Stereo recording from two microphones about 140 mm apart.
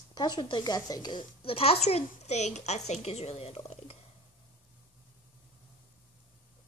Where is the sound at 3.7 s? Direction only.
50° left (ahead or behind).